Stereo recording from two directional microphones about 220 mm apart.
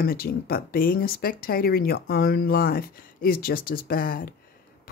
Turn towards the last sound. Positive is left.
turn(degrees=40)  # may be behind; listen again after turning